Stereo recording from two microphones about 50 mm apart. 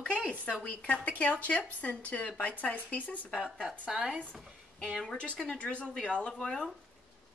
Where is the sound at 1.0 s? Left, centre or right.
Left.